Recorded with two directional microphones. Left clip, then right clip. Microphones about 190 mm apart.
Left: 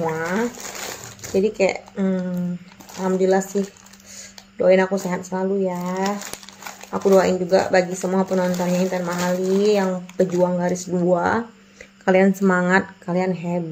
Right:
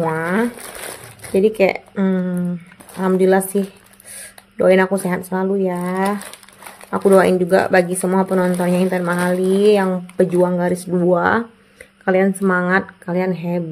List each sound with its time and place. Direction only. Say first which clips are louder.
0.1 s crumpling: right 4 dB; 35° right (ahead or behind)
1.3 s speech: right 4 dB; 35° right (ahead or behind)
4.6 s speech: right 3 dB; 35° right (ahead or behind)
12.0 s speech: right 1 dB; centre (ahead or behind)